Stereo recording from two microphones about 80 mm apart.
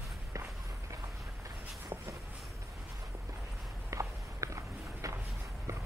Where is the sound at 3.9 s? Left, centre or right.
Right.